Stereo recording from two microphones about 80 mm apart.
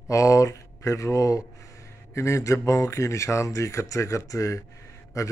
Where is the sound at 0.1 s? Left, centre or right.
Left.